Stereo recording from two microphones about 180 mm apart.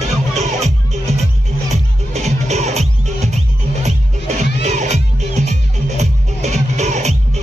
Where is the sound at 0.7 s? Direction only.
40° right (ahead or behind).